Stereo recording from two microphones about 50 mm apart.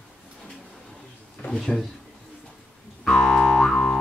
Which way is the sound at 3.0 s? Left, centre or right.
Centre.